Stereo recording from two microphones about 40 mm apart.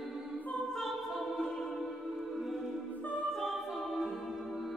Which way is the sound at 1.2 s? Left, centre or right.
Centre.